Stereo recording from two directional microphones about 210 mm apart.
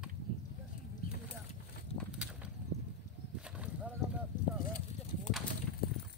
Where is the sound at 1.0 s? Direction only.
40° left (ahead or behind).